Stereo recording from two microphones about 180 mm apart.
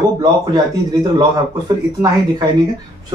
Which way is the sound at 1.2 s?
25° right (ahead or behind).